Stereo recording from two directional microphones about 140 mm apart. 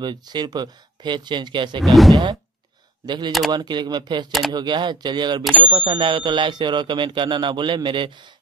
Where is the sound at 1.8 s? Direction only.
Centre (ahead or behind).